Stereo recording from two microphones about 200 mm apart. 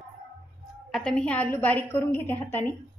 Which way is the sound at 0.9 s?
5° left (ahead or behind).